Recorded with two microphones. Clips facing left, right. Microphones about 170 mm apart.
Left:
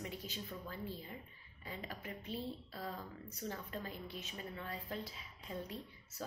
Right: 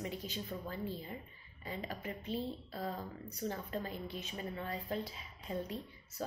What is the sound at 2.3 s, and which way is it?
Speech, 30° right (ahead or behind).